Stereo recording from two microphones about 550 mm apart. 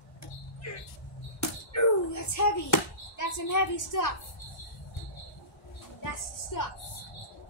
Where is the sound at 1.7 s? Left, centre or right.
Left.